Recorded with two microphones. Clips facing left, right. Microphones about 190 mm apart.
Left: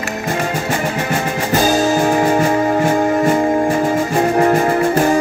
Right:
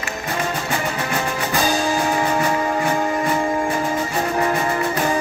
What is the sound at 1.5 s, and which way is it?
Music, 40° left (ahead or behind).